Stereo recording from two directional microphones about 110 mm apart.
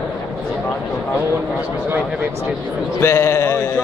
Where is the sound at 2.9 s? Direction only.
25° left (ahead or behind).